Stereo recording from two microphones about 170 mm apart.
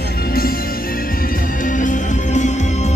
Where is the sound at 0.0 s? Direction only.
60° left (ahead or behind).